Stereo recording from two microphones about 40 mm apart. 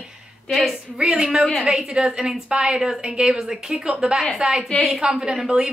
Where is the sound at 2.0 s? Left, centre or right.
Centre.